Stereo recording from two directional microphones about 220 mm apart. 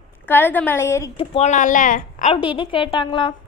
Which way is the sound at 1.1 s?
30° left (ahead or behind).